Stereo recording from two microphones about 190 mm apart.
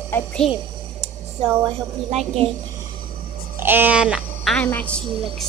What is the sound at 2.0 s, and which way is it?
Speech, 35° right (ahead or behind).